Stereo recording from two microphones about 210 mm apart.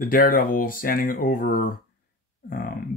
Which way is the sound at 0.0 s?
45° left (ahead or behind).